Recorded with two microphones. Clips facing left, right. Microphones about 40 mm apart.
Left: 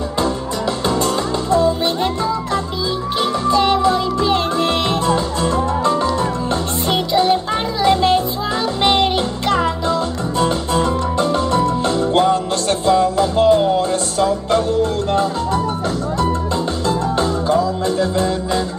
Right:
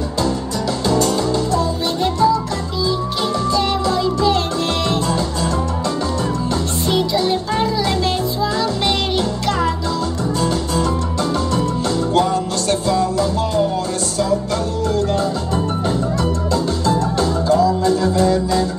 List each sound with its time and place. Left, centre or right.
0.8 s music: left
16.8 s music: left